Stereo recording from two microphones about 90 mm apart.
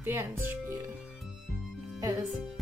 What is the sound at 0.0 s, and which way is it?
Speech, 25° right (ahead or behind).